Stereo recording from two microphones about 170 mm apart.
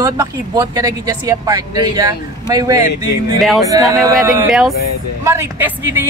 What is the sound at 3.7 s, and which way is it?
Speech, 20° right (ahead or behind).